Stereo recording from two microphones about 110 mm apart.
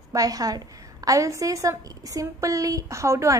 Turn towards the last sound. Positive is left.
turn(degrees=-25)  # may be behind; listen again after turning